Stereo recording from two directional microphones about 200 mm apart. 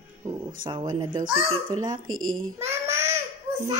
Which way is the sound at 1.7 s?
90° right.